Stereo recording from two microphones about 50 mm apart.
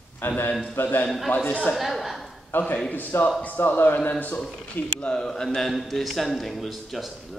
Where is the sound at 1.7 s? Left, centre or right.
Centre.